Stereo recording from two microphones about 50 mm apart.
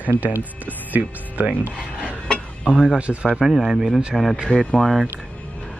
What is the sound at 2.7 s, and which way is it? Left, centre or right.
Speech, centre.